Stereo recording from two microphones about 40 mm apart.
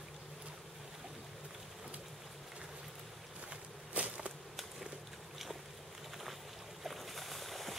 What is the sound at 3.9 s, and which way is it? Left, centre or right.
Insect, right.